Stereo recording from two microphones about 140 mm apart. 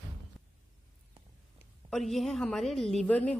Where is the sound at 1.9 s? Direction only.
Centre (ahead or behind).